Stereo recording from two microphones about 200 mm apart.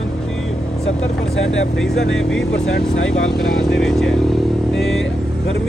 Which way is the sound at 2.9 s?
65° left (ahead or behind).